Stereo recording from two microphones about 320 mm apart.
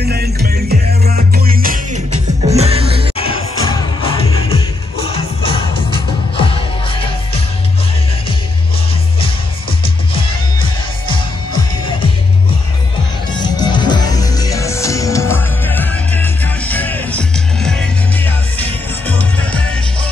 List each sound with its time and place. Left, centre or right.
0.0 s music: right
3.2 s music: centre
13.4 s music: centre